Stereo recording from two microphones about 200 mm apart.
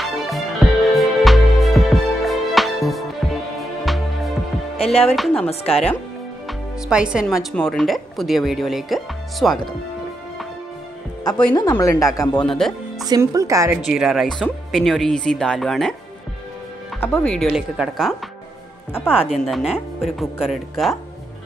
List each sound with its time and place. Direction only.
0.0 s music: centre (ahead or behind)
4.7 s speech: 30° left (ahead or behind)
5.1 s speech: centre (ahead or behind)
5.5 s speech: 30° left (ahead or behind)
6.4 s a woman's voice: 5° right (ahead or behind)
11.7 s speech: 15° left (ahead or behind)
12.4 s speech: centre (ahead or behind)
13.1 s speech: 15° right (ahead or behind)
13.8 s speech: centre (ahead or behind)
17.0 s speech: 5° left (ahead or behind)